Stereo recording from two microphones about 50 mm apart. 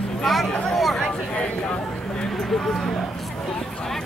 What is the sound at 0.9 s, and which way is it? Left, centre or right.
Speech, centre.